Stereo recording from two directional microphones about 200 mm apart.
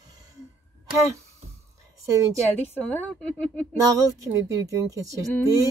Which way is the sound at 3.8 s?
15° right (ahead or behind).